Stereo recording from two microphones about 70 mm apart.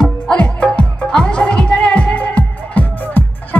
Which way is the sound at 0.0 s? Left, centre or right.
Centre.